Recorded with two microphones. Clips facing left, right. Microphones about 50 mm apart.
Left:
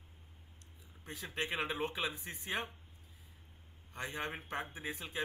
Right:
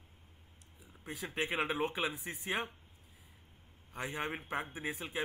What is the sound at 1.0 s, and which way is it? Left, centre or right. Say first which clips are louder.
Speech: right 2 dB; centre.